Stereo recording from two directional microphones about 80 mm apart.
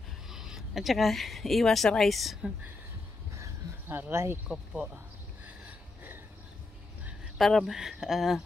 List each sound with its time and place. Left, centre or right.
0.3 s speech: centre
3.9 s speech: right
7.3 s speech: centre